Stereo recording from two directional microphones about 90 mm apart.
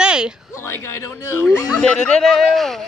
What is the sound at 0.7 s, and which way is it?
Speech, 30° left (ahead or behind).